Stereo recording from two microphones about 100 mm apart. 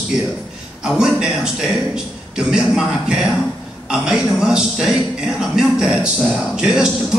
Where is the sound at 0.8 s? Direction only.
5° right (ahead or behind).